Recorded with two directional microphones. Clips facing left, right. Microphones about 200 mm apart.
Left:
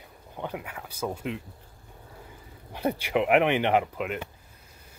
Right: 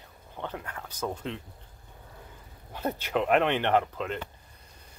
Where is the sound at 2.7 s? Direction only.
10° left (ahead or behind).